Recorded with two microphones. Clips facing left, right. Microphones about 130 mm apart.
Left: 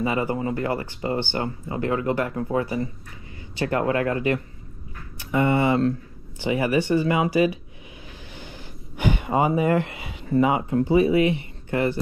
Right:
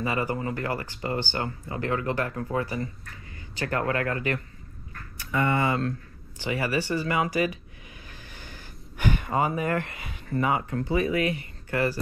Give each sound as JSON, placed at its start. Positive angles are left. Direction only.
{"t": 0.0, "sound": "speech", "side_deg": 20}
{"t": 8.4, "sound": "gasp", "side_deg": 15}
{"t": 9.6, "sound": "speech", "side_deg": 20}